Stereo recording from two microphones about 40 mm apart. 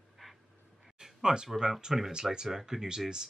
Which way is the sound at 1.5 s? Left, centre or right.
Centre.